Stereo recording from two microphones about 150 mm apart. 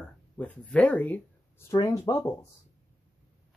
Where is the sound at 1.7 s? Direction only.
25° left (ahead or behind).